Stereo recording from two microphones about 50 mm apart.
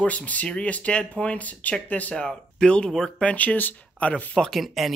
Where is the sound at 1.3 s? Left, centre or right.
Left.